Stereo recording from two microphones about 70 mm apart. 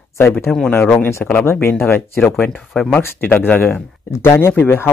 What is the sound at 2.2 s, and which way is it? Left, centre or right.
Speech, centre.